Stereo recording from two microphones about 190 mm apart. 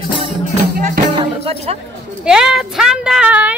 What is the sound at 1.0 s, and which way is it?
Music, 50° right (ahead or behind).